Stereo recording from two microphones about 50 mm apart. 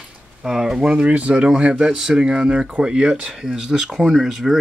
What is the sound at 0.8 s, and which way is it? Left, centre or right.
Speech, right.